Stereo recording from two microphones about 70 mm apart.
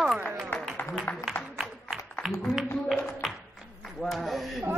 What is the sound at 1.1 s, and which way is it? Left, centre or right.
Speech, left.